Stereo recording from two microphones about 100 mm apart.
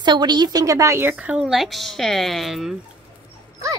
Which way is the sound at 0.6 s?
30° right (ahead or behind).